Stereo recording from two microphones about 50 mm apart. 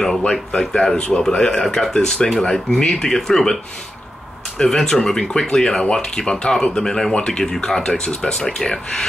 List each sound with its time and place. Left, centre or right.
0.3 s speech: centre
4.6 s speech: centre
8.4 s speech: centre